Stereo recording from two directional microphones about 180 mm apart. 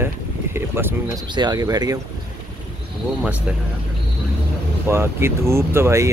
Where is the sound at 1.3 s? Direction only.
25° right (ahead or behind).